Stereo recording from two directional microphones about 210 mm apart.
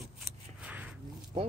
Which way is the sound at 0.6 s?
5° right (ahead or behind).